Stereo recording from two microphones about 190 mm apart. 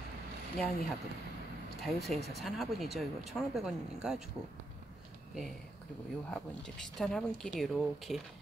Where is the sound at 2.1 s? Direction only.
35° right (ahead or behind).